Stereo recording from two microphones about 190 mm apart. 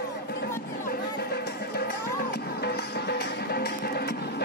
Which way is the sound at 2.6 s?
60° left (ahead or behind).